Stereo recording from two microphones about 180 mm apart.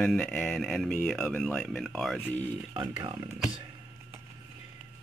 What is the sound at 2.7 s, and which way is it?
Speech, 25° right (ahead or behind).